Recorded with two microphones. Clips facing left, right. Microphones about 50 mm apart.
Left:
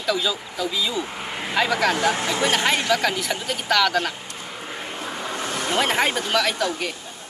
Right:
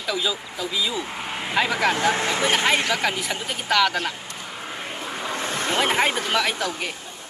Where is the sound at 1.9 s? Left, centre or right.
Right.